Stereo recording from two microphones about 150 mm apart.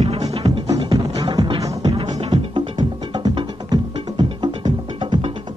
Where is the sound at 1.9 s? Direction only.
35° right (ahead or behind).